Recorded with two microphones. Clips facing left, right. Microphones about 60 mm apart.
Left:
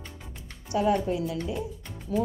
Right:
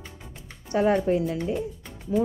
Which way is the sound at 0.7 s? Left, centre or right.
Right.